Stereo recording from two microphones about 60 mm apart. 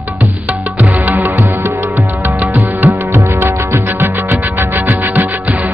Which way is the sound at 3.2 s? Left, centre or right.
Right.